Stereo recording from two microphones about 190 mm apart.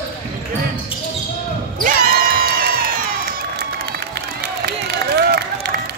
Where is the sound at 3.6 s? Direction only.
60° right (ahead or behind).